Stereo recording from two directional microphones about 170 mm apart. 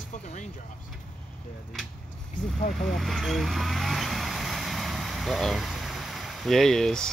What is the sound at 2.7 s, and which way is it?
Vehicle, centre (ahead or behind).